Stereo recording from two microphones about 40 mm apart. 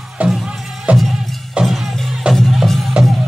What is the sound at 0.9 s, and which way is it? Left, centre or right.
Music, right.